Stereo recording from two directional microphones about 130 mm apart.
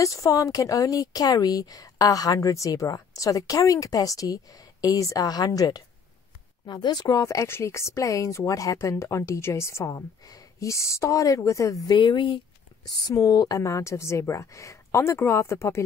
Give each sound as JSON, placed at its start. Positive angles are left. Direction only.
{"t": 0.0, "sound": "speech", "side_deg": 25}